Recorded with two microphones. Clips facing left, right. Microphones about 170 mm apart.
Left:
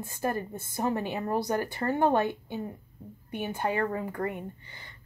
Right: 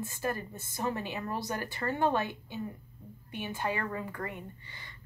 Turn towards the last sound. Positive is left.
turn(degrees=35)  # may be behind; listen again after turning